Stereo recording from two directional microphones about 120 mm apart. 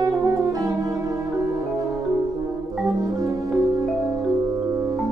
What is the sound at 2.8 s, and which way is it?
Music, 30° right (ahead or behind).